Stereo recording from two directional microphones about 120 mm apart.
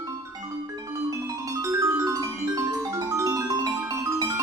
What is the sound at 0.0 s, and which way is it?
Music, 30° right (ahead or behind).